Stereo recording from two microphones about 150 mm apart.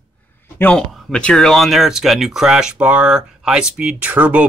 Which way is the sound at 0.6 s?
5° left (ahead or behind).